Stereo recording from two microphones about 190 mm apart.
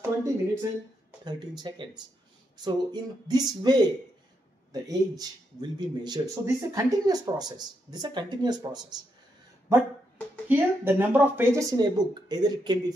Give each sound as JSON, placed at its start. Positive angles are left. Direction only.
{"t": 0.0, "sound": "speech", "side_deg": -15}
{"t": 4.8, "sound": "speech", "side_deg": -20}
{"t": 10.5, "sound": "speech", "side_deg": -10}
{"t": 11.7, "sound": "speech", "side_deg": -20}